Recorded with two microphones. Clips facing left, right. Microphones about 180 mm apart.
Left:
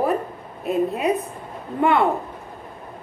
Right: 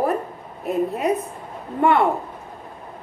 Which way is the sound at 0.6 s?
15° left (ahead or behind).